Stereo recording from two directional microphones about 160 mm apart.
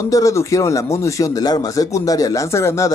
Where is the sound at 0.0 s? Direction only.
20° left (ahead or behind).